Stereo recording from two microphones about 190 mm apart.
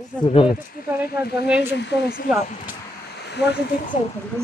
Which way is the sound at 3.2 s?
60° left (ahead or behind).